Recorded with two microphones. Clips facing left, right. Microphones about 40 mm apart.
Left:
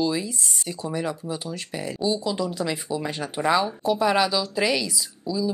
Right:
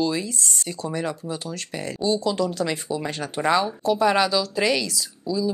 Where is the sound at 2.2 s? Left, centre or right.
Centre.